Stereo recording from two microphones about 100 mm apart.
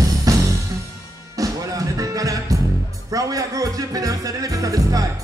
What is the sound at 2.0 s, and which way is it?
Music, 35° right (ahead or behind).